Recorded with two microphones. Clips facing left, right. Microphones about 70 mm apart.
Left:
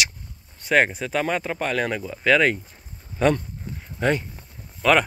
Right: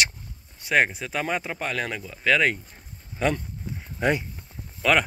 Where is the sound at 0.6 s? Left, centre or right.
Centre.